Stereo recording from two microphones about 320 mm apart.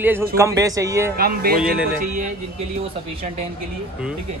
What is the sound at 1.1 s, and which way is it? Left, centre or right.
Speech, right.